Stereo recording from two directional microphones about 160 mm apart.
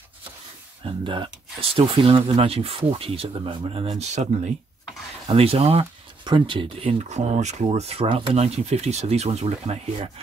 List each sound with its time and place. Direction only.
0.8 s speech: 30° right (ahead or behind)
5.3 s speech: 35° right (ahead or behind)